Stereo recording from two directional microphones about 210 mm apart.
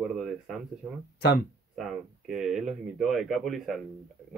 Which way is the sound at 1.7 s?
Centre (ahead or behind).